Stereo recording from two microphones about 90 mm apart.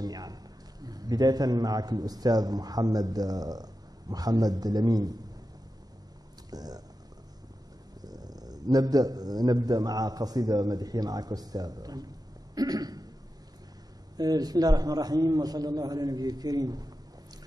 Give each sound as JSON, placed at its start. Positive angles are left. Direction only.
{"t": 0.0, "sound": "a man's voice", "side_deg": -45}
{"t": 6.5, "sound": "a man's voice", "side_deg": -45}
{"t": 8.0, "sound": "a man's voice", "side_deg": -45}
{"t": 12.5, "sound": "throat clearing", "side_deg": -45}
{"t": 14.1, "sound": "a man's voice", "side_deg": -45}